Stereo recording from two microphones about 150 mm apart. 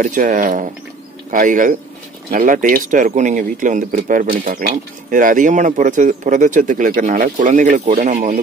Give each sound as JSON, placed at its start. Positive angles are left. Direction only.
{"t": 0.0, "sound": "speech", "side_deg": -60}